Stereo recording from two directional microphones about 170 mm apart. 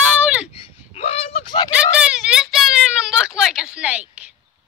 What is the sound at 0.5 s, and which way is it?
Speech, 35° left (ahead or behind).